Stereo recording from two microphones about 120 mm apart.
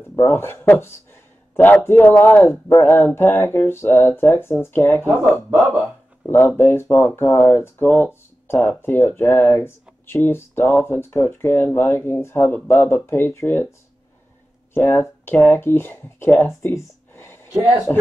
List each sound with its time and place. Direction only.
0.2 s speech: 20° left (ahead or behind)
5.3 s speech: 10° right (ahead or behind)
6.2 s speech: 15° left (ahead or behind)